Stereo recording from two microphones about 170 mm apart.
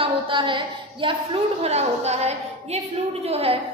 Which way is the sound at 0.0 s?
30° right (ahead or behind).